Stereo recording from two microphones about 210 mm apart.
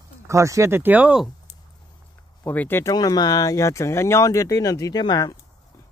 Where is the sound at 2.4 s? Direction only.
10° left (ahead or behind).